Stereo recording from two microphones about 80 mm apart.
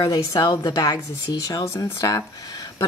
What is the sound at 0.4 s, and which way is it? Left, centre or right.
Speech, left.